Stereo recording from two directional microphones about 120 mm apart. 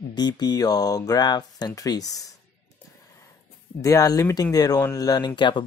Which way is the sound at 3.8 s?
30° left (ahead or behind).